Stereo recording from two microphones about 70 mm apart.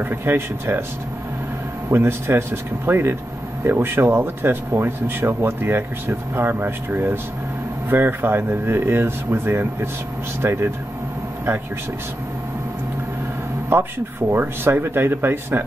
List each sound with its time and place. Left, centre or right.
0.0 s speech: right
1.9 s speech: right
14.3 s speech: right